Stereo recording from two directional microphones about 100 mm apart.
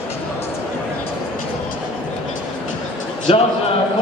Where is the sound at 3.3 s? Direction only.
65° left (ahead or behind).